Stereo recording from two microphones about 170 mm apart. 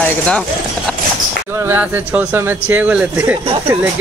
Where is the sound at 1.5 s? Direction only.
15° right (ahead or behind).